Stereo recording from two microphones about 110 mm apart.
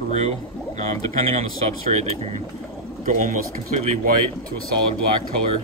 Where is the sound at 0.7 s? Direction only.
80° right.